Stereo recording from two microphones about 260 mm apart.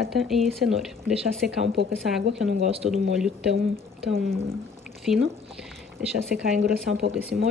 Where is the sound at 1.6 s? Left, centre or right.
Right.